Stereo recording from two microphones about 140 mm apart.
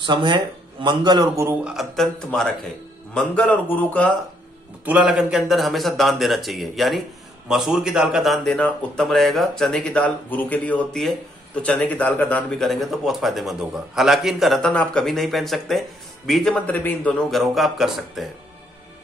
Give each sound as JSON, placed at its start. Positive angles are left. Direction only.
{"t": 0.0, "sound": "speech", "side_deg": -35}
{"t": 1.6, "sound": "a man's voice", "side_deg": -5}
{"t": 4.8, "sound": "a man's voice", "side_deg": -10}
{"t": 17.3, "sound": "a man's voice", "side_deg": 0}